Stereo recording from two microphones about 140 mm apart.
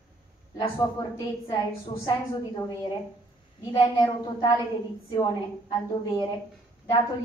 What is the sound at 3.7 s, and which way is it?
A woman's voice, 30° left (ahead or behind).